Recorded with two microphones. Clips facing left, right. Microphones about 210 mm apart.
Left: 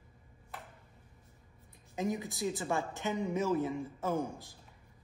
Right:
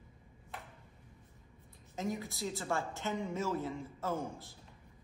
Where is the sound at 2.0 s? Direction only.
20° left (ahead or behind).